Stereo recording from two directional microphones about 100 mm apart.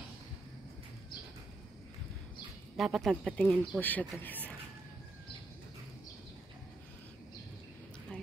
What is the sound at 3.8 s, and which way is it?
Speech, 20° left (ahead or behind).